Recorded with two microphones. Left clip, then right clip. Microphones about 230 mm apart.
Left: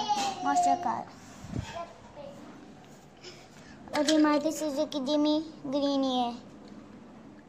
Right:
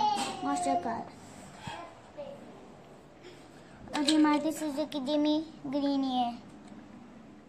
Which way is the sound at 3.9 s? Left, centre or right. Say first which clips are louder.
Left 2 dB; centre.